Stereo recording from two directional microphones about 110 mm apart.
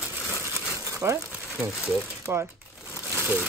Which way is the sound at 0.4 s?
25° right (ahead or behind).